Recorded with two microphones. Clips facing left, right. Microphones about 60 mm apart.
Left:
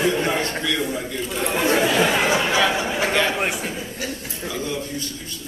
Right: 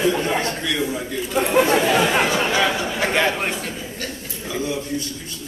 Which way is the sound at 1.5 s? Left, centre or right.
Right.